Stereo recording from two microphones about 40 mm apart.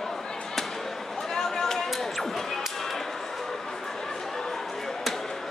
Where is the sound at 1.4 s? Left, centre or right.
Centre.